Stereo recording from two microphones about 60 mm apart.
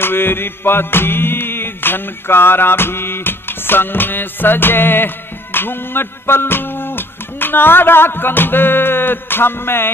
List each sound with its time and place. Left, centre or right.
0.0 s music: left